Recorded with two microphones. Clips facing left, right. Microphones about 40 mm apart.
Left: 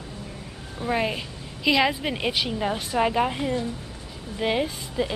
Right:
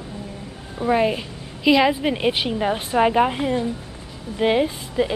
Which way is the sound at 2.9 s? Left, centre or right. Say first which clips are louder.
Right 6 dB; centre.